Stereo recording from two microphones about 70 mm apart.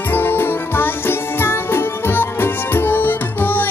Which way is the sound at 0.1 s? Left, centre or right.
Left.